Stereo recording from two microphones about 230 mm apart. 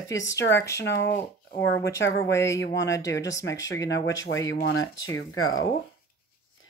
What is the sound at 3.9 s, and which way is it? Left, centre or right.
Speech, left.